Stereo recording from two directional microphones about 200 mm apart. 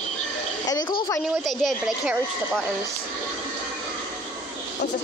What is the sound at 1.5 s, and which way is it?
Speech, centre (ahead or behind).